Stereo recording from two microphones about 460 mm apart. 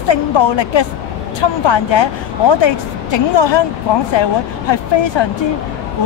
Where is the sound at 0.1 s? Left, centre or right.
Left.